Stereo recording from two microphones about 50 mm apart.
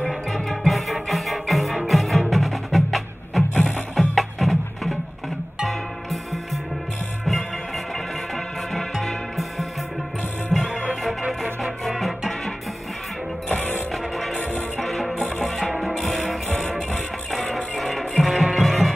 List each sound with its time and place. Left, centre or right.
0.1 s music: centre
10.5 s music: centre
13.5 s mechanisms: left
13.9 s music: centre
14.4 s music: left
14.8 s music: centre